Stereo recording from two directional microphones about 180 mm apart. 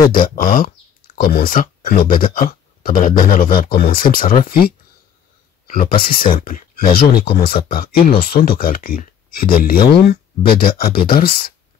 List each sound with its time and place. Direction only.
0.4 s speech: 50° left (ahead or behind)